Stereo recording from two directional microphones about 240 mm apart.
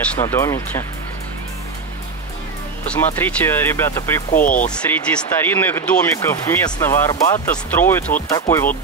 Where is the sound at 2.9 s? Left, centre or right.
Centre.